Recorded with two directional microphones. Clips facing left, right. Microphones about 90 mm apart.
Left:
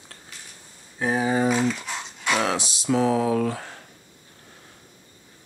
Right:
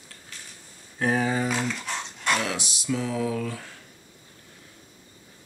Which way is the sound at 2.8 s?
45° left (ahead or behind).